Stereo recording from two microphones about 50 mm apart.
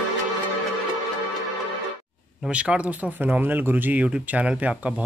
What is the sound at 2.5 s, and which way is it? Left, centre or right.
Speech, right.